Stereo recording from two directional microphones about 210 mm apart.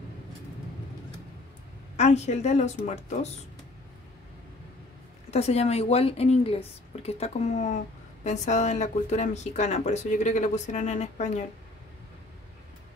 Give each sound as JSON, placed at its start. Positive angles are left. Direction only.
{"t": 2.0, "sound": "a woman's voice", "side_deg": 30}
{"t": 5.3, "sound": "a woman's voice", "side_deg": 30}